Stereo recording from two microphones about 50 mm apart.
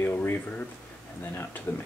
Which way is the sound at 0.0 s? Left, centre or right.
Left.